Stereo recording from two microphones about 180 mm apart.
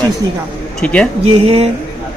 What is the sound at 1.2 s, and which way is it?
Speech, 35° right (ahead or behind).